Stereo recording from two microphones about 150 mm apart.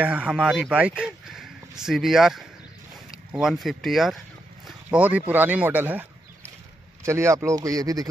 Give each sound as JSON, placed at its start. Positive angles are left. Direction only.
{"t": 0.0, "sound": "speech", "side_deg": -10}
{"t": 7.1, "sound": "speech", "side_deg": -20}